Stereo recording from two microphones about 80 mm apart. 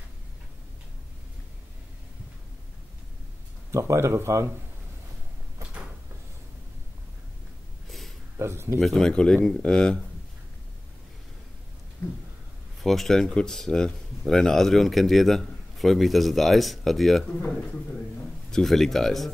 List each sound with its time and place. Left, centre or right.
3.7 s speech: right
8.4 s speech: right
8.7 s speech: centre
12.8 s speech: centre
18.5 s speech: centre